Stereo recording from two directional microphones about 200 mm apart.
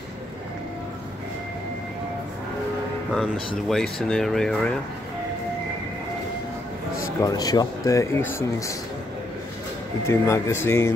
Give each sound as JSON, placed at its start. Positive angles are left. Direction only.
{"t": 3.1, "sound": "speech", "side_deg": 0}
{"t": 7.2, "sound": "speech", "side_deg": 20}
{"t": 10.0, "sound": "speech", "side_deg": 15}